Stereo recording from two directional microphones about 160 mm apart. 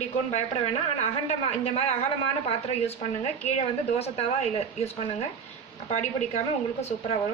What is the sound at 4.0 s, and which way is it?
A man's voice, 40° left (ahead or behind).